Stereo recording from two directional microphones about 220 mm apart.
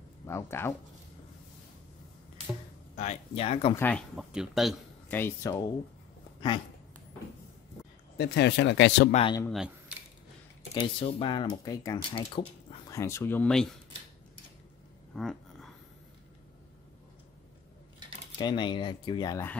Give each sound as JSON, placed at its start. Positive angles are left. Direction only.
{"t": 0.3, "sound": "speech", "side_deg": 10}
{"t": 3.0, "sound": "speech", "side_deg": 30}
{"t": 3.7, "sound": "speech", "side_deg": 5}
{"t": 8.2, "sound": "speech", "side_deg": 50}
{"t": 9.1, "sound": "speech", "side_deg": 25}
{"t": 9.5, "sound": "a sound", "side_deg": -5}
{"t": 10.7, "sound": "speech", "side_deg": 25}
{"t": 15.1, "sound": "a sound", "side_deg": 0}
{"t": 18.4, "sound": "speech", "side_deg": 20}